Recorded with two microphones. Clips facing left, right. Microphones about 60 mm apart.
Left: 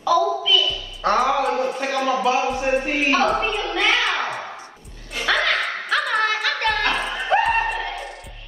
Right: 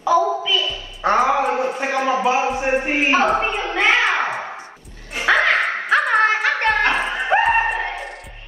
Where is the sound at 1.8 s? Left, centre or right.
Right.